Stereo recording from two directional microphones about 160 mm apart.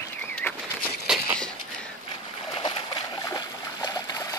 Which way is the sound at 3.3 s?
25° left (ahead or behind).